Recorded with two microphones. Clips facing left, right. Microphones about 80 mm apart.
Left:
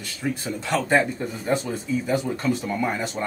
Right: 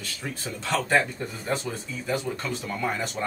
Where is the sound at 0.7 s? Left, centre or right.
Centre.